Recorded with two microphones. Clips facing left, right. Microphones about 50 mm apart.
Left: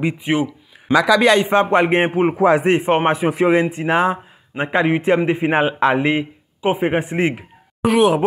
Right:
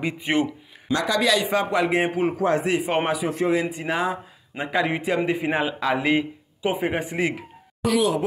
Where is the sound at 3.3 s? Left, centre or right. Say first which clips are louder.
Left 6 dB; left.